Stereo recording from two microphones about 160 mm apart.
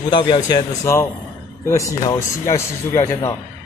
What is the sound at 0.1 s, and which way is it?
Speech, 30° left (ahead or behind).